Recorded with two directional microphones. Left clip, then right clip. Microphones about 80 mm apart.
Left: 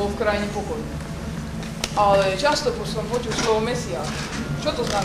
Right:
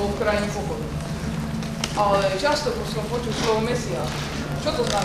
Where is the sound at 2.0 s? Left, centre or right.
Centre.